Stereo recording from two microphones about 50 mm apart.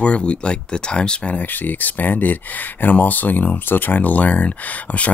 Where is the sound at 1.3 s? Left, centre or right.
Left.